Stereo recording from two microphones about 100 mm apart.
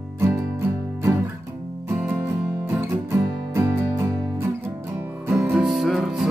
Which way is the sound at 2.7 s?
20° right (ahead or behind).